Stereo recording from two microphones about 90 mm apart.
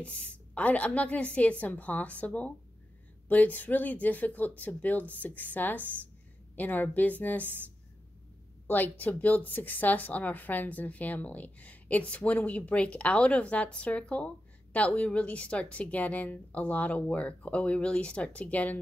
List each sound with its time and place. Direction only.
0.0 s a woman's voice: 15° left (ahead or behind)
8.6 s a woman's voice: 20° left (ahead or behind)